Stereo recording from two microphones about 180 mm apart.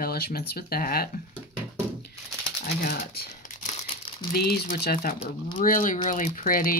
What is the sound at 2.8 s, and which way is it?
Speech, 55° left (ahead or behind).